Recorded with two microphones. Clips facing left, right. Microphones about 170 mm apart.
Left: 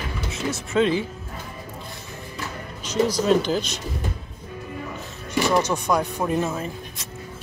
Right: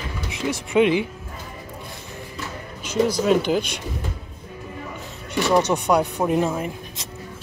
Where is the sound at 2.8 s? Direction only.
55° right (ahead or behind).